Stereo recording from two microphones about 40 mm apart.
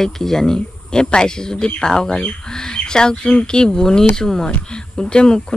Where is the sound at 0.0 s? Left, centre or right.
Centre.